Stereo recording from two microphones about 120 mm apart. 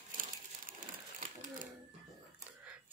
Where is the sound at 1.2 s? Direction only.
90° right.